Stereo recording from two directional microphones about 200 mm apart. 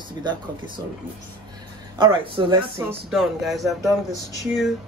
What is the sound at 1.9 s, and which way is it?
Speech, 20° right (ahead or behind).